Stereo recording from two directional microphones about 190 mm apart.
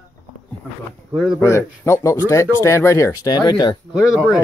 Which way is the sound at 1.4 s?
15° left (ahead or behind).